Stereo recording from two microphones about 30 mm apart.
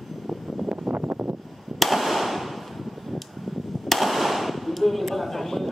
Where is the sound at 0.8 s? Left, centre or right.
Right.